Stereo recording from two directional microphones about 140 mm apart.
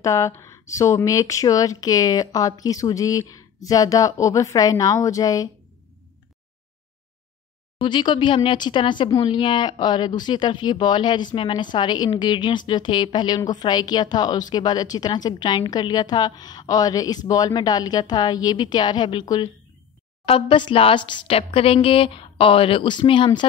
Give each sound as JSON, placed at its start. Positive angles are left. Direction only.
{"t": 0.0, "sound": "speech", "side_deg": 20}
{"t": 7.8, "sound": "speech", "side_deg": 35}